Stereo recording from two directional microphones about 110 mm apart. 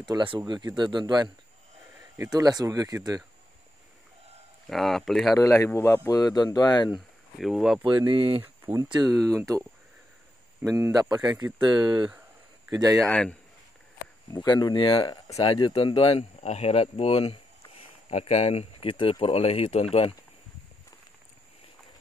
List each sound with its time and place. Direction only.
0.0 s speech: 45° right (ahead or behind)
2.3 s speech: 35° right (ahead or behind)
4.6 s speech: centre (ahead or behind)
5.3 s speech: 30° left (ahead or behind)
7.3 s speech: centre (ahead or behind)
7.8 s speech: 45° right (ahead or behind)
8.8 s speech: 40° right (ahead or behind)
13.0 s a man's voice: 10° left (ahead or behind)
14.3 s speech: 40° left (ahead or behind)
15.2 s speech: 65° left (ahead or behind)